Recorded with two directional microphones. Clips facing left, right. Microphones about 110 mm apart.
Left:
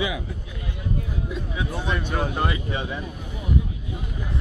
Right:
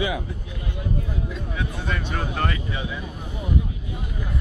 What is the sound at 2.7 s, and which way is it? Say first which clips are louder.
Speech: left 2 dB; 30° left (ahead or behind).